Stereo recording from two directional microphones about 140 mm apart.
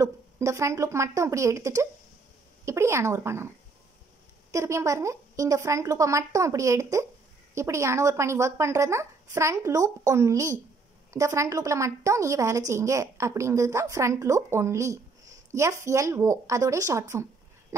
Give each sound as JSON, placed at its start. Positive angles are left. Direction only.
{"t": 0.0, "sound": "a woman's voice", "side_deg": -20}
{"t": 4.5, "sound": "a woman's voice", "side_deg": -20}